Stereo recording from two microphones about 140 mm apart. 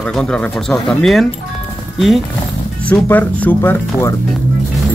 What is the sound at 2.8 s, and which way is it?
Speech, 10° left (ahead or behind).